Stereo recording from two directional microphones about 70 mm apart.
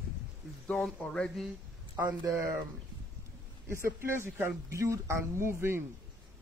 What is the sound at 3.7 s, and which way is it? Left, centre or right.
Speech, right.